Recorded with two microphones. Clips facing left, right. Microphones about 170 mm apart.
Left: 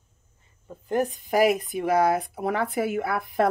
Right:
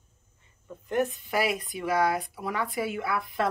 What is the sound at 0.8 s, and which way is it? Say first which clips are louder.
Speech: left 2 dB; 40° left (ahead or behind).